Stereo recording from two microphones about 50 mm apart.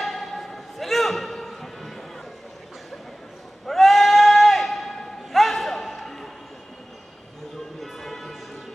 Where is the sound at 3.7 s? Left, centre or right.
Centre.